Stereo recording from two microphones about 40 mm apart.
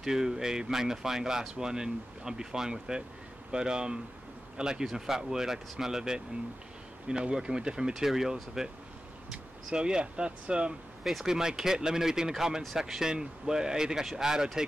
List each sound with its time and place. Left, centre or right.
0.0 s speech: centre
7.9 s speech: centre; by 10.7 s right
11.1 s speech: centre